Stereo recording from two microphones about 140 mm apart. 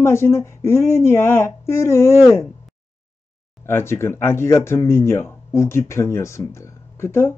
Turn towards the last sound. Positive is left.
turn(degrees=15)  # may be behind; listen again after turning